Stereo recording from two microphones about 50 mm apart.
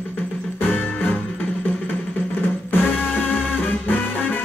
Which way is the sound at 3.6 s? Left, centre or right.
Left.